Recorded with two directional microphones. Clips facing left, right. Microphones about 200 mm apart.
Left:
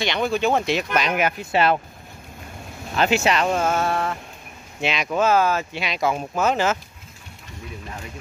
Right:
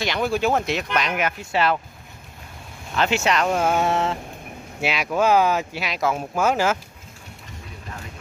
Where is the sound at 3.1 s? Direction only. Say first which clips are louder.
Left 1 dB; 5° left (ahead or behind).